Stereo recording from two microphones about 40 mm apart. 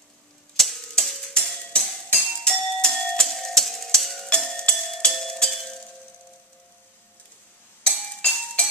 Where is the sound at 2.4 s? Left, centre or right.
Centre.